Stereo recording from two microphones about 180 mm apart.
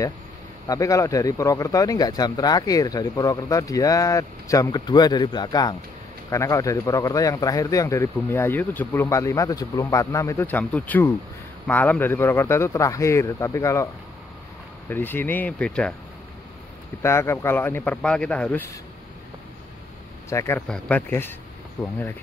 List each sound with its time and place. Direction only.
0.7 s a man's voice: 20° left (ahead or behind)
14.9 s a man's voice: 10° left (ahead or behind)
17.0 s a man's voice: 15° left (ahead or behind)
20.2 s a man's voice: 15° left (ahead or behind)